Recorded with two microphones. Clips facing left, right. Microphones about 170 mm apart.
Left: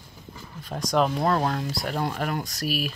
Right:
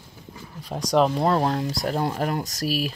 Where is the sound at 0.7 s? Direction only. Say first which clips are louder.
Right 3 dB; 10° right (ahead or behind).